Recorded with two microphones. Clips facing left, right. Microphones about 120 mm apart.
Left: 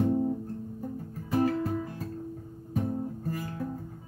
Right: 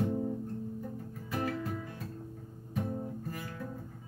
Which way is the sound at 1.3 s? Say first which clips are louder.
Left 8 dB; 35° left (ahead or behind).